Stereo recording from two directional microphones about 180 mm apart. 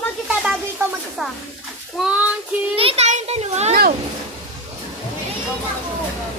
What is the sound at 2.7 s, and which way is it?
A child's voice, 35° right (ahead or behind).